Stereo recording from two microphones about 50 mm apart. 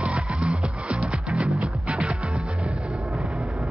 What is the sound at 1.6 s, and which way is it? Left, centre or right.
Music, right.